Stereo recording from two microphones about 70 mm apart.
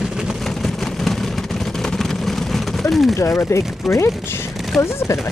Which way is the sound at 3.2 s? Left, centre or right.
Left.